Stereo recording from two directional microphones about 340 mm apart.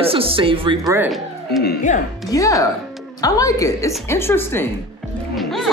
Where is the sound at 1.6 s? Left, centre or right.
Left.